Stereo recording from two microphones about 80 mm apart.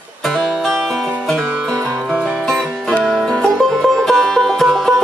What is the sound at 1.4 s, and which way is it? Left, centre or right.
Music, centre.